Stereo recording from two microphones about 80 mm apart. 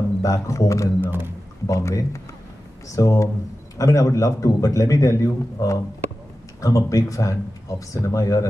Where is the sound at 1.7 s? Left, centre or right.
Left.